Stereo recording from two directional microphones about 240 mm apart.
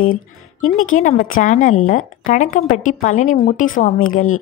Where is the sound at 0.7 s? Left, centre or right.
Left.